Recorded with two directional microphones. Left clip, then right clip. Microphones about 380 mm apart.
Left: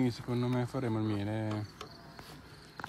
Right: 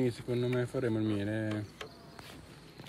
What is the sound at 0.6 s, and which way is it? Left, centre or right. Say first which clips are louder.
Speech: right 3 dB; centre.